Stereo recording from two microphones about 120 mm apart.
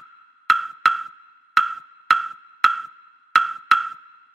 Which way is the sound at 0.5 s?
Centre (ahead or behind).